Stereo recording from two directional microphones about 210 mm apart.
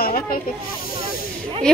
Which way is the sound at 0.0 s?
45° left (ahead or behind).